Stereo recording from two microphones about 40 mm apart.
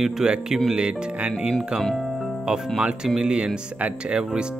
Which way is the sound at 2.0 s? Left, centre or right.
Centre.